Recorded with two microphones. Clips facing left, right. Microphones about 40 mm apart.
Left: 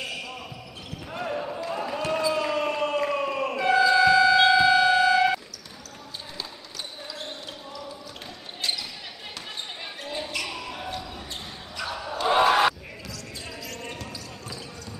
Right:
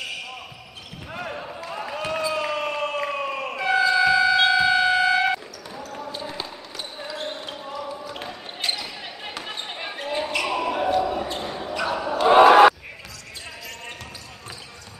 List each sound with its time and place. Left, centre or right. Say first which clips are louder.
0.0 s basketball bounce: right 1 dB; centre
2.0 s a sound: even; centre
5.9 s basketball bounce: right 6 dB; right